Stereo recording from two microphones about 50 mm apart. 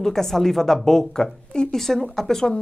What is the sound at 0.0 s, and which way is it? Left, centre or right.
A woman's voice, centre.